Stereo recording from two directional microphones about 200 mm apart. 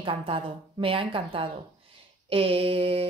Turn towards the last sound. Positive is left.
turn(degrees=-30)  # may be behind; listen again after turning